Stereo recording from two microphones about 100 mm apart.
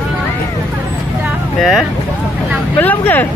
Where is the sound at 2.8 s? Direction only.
20° left (ahead or behind).